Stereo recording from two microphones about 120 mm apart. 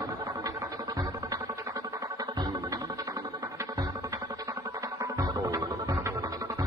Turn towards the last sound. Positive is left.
turn(degrees=-30)  # may be behind; listen again after turning